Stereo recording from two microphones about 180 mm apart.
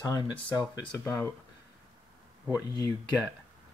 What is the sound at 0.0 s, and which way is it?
Speech, 20° left (ahead or behind).